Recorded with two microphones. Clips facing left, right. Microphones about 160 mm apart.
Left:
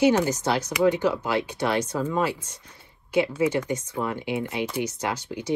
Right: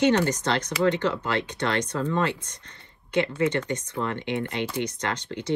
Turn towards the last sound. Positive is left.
turn(degrees=10)  # may be behind; listen again after turning